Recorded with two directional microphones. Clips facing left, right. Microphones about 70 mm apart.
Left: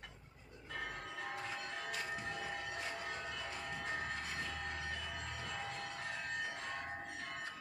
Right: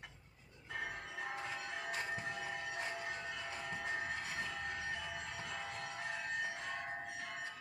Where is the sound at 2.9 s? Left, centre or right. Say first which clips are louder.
Right 1 dB; centre.